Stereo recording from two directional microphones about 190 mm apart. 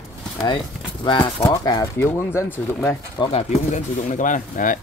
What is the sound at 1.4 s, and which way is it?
Speech, 20° left (ahead or behind).